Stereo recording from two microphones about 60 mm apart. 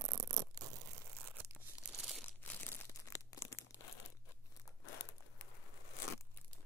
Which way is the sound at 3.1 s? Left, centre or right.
Left.